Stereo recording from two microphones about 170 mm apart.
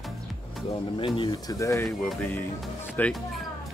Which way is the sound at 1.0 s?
25° left (ahead or behind).